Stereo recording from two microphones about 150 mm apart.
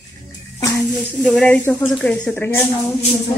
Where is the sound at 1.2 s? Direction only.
5° left (ahead or behind).